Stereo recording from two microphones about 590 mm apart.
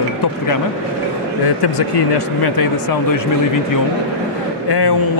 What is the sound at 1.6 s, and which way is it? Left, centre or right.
Speech, left.